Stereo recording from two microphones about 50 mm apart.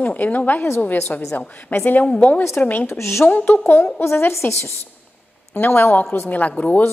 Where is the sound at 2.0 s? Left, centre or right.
Left.